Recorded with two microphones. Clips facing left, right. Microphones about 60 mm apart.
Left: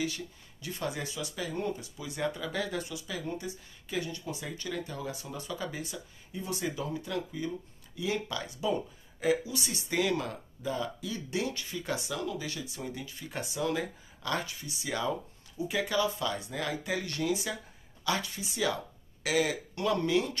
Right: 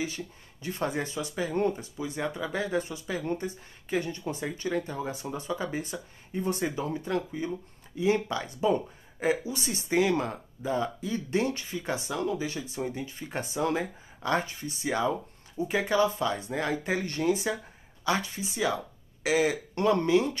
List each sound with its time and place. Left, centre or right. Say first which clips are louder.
0.0 s speech: right 1 dB; right
1.5 s speech: right 8 dB; right
2.0 s speech: right 2 dB; right
19.7 s speech: right 5 dB; right